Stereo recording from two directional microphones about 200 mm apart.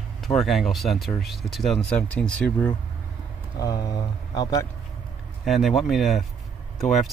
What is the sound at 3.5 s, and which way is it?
Speech, 20° left (ahead or behind).